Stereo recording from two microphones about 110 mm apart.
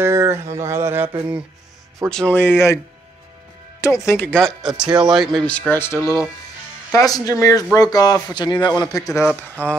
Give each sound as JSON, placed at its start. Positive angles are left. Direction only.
{"t": 0.0, "sound": "a sound", "side_deg": -25}
{"t": 2.0, "sound": "speech", "side_deg": 5}
{"t": 2.3, "sound": "speech", "side_deg": 20}
{"t": 3.8, "sound": "speech", "side_deg": 25}
{"t": 4.3, "sound": "speech", "side_deg": 5}
{"t": 4.7, "sound": "speech", "side_deg": -10}
{"t": 9.6, "sound": "speech", "side_deg": 15}